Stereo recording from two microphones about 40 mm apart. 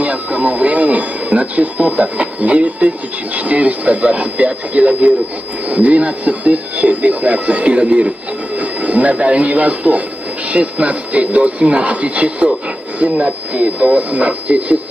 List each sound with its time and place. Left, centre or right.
0.0 s speech: right